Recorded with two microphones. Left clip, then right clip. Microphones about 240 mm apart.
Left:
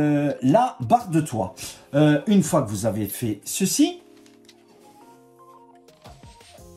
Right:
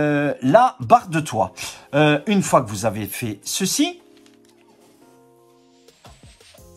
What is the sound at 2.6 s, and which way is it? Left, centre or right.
Speech, centre.